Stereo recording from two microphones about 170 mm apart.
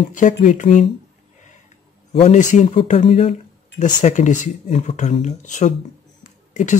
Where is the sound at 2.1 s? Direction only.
40° left (ahead or behind).